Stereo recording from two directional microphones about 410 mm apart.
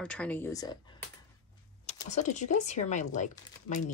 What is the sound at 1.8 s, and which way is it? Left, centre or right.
Speech, centre.